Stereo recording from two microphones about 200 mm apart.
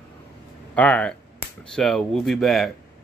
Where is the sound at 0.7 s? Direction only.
5° left (ahead or behind).